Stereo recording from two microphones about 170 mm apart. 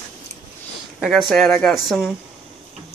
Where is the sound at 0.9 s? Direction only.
Centre (ahead or behind).